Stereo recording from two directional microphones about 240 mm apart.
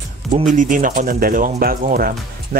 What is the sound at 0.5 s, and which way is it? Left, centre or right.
Speech, right.